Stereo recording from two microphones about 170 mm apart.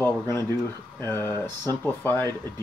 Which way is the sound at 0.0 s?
15° left (ahead or behind).